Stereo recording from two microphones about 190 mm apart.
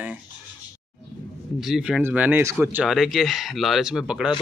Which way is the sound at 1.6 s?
Centre (ahead or behind).